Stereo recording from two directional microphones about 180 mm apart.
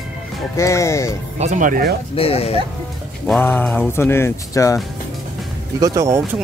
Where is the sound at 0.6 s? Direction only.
15° left (ahead or behind).